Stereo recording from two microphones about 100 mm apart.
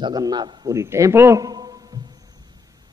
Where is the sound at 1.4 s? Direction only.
40° right (ahead or behind).